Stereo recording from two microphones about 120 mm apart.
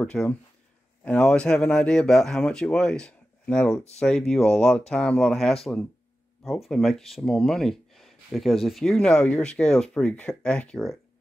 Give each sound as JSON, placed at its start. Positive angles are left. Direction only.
{"t": 0.0, "sound": "speech", "side_deg": 10}